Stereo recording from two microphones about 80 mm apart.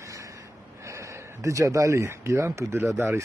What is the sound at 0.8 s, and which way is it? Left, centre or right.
Speech, right.